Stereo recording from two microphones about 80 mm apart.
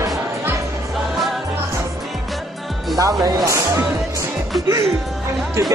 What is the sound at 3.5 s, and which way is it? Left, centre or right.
Speech, right.